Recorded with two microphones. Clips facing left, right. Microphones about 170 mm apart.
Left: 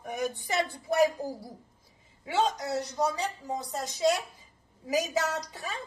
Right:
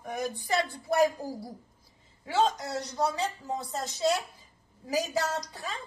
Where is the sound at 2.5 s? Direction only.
15° left (ahead or behind).